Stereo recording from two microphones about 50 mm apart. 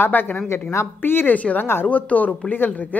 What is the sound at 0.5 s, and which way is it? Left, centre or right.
Speech, left.